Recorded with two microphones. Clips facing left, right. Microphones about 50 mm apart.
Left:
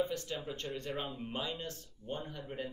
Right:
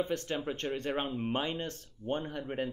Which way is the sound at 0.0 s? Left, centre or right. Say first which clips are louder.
Right 3 dB; right.